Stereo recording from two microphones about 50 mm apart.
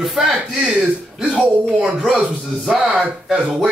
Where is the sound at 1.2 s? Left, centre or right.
Centre.